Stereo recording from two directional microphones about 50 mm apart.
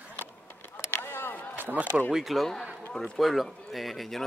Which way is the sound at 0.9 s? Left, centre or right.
Left.